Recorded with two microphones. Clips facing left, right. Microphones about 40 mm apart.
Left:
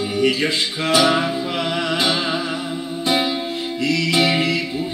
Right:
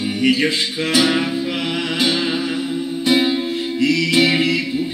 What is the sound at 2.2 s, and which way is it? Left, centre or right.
Music, centre.